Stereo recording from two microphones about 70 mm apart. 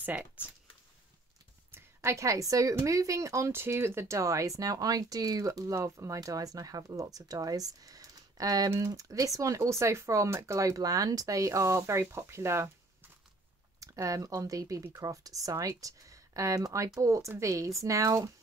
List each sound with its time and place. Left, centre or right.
0.0 s speech: right
1.7 s a woman's voice: right
13.7 s a woman's voice: right